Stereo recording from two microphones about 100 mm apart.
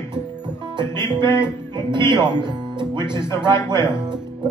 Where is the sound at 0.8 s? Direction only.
45° right (ahead or behind).